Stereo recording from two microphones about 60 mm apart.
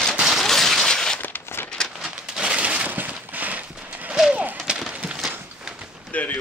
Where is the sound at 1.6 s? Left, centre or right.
Centre.